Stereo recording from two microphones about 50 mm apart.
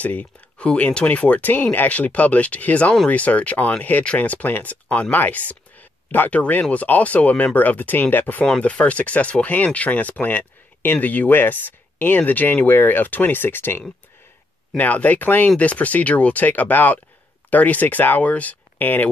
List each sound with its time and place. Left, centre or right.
0.0 s speech: left
8.5 s speech: left
14.8 s speech: left